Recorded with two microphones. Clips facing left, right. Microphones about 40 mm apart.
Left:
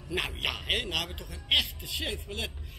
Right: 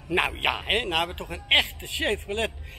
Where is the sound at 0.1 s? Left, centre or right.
Right.